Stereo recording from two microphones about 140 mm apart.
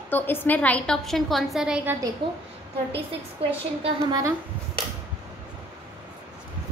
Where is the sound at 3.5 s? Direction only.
45° right (ahead or behind).